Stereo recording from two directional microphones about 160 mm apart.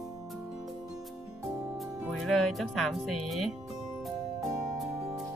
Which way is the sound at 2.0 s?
Centre (ahead or behind).